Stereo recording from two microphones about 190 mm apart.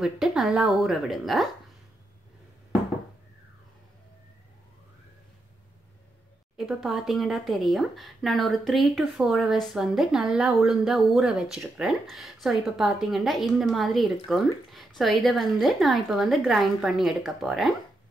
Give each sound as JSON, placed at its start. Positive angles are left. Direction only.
{"t": 0.0, "sound": "speech", "side_deg": 0}
{"t": 6.5, "sound": "speech", "side_deg": 0}